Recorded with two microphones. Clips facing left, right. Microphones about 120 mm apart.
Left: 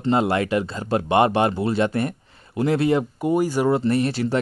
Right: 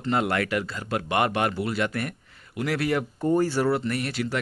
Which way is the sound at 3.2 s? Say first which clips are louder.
Right 1 dB; 15° left (ahead or behind).